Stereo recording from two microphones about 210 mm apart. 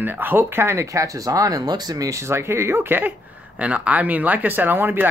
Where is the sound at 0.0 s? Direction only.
10° right (ahead or behind).